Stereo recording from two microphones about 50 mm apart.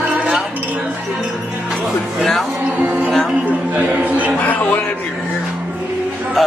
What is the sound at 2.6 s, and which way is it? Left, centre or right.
Music, right.